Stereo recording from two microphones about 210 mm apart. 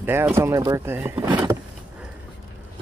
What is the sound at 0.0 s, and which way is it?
Speech, 10° right (ahead or behind).